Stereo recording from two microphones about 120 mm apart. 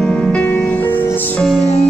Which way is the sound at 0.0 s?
10° left (ahead or behind).